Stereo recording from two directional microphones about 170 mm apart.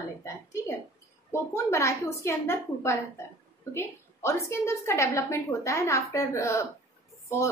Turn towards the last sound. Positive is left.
turn(degrees=15)  # may be behind; listen again after turning